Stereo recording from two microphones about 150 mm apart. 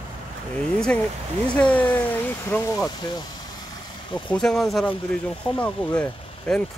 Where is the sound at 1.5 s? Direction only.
10° left (ahead or behind).